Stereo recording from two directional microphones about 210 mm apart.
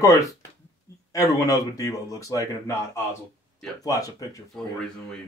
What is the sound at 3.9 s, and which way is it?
Speech, 15° left (ahead or behind).